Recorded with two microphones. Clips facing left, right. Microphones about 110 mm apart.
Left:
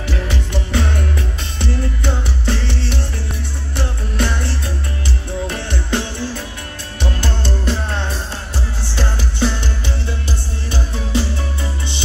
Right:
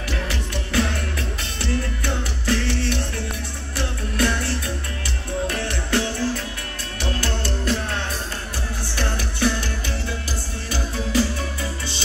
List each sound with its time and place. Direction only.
0.7 s music: 20° left (ahead or behind)
5.5 s music: 20° left (ahead or behind)